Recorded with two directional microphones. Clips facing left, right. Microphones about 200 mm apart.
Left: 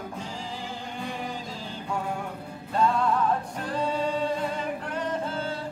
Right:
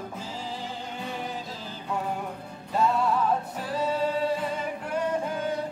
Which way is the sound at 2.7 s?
5° right (ahead or behind).